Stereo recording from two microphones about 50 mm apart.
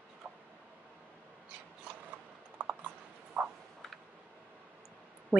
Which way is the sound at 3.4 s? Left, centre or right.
Right.